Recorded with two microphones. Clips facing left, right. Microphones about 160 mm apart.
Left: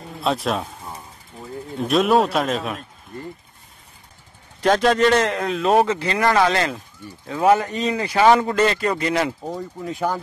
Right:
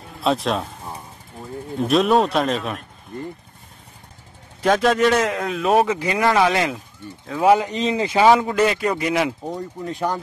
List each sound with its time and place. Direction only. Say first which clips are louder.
0.2 s speech: right 1 dB; centre (ahead or behind)
1.8 s speech: even; centre (ahead or behind)
4.6 s speech: even; 5° right (ahead or behind)
5.9 s a man's voice: even; 15° right (ahead or behind)
8.3 s a man's voice: left 1 dB; 5° right (ahead or behind)
9.4 s speech: right 1 dB; centre (ahead or behind)